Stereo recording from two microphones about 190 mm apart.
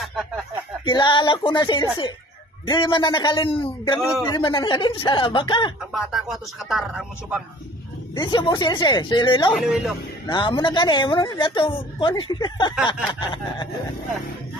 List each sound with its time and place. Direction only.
0.0 s a sound: centre (ahead or behind)
0.8 s speech: 25° left (ahead or behind)
5.9 s speech: centre (ahead or behind)
8.2 s speech: 25° left (ahead or behind)
9.5 s speech: 5° right (ahead or behind)
10.2 s speech: 25° left (ahead or behind)